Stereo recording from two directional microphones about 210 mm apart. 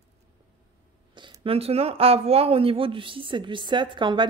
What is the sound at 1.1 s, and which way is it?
Speech, 20° right (ahead or behind).